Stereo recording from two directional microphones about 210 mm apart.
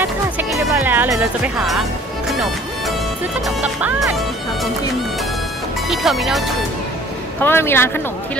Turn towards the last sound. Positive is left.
turn(degrees=10)  # may be behind; listen again after turning